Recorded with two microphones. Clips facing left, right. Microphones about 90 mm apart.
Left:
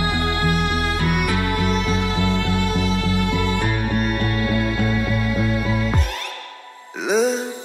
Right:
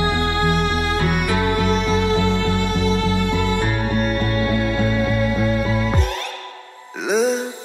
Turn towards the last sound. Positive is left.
turn(degrees=0)  # may be behind; listen again after turning